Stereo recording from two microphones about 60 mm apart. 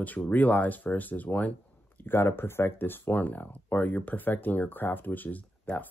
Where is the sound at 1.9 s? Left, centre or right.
Left.